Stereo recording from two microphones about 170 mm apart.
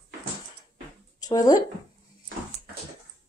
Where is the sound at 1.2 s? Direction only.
20° left (ahead or behind).